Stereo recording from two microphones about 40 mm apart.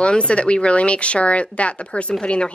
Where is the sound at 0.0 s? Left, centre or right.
Left.